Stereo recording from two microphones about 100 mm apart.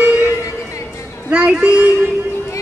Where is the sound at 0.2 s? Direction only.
30° left (ahead or behind).